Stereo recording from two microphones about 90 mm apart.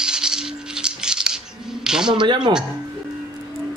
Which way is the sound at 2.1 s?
60° right (ahead or behind).